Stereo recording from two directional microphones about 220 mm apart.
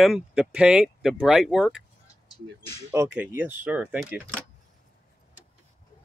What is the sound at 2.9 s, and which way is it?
Speech, 5° right (ahead or behind).